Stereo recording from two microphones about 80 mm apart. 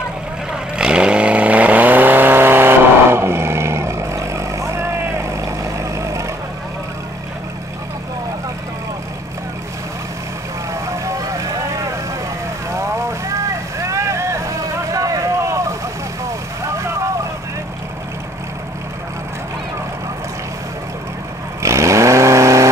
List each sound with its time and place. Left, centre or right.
0.5 s vehicle: centre; by 6.2 s right
10.7 s vehicle: right
14.9 s boat: right
21.6 s vehicle: right